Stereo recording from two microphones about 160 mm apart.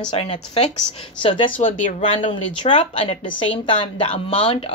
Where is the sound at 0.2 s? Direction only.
40° left (ahead or behind).